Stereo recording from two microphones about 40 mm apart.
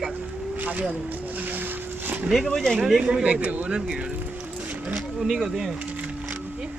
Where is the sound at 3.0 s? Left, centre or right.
Right.